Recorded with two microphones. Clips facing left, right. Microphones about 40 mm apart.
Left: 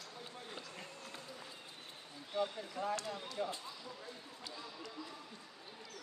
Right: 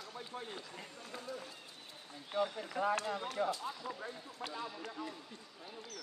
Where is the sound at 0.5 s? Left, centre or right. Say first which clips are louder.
Right 1 dB; centre.